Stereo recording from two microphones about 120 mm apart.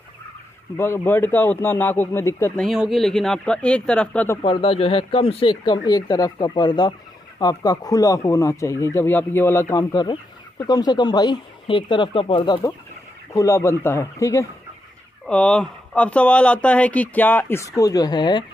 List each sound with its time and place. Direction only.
0.7 s speech: 20° left (ahead or behind)
2.5 s speech: centre (ahead or behind)
4.4 s speech: 50° left (ahead or behind); by 9.8 s 20° left (ahead or behind)
9.8 s speech: 35° left (ahead or behind)
13.3 s speech: 25° left (ahead or behind)
15.2 s speech: 10° left (ahead or behind); by 18.4 s 40° left (ahead or behind)